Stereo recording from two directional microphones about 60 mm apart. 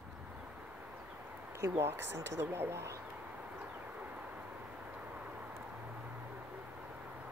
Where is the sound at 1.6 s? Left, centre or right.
Right.